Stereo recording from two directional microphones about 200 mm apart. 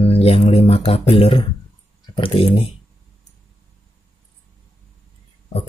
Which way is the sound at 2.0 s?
25° left (ahead or behind).